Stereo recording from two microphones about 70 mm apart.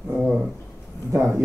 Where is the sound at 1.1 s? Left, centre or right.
Right.